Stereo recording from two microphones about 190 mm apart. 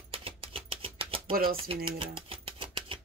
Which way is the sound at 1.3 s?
50° right (ahead or behind).